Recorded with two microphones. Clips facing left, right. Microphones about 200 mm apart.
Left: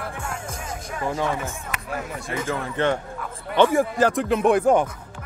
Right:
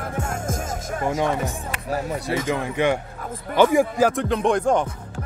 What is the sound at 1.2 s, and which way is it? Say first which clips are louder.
Speech: right 3 dB; 40° right (ahead or behind).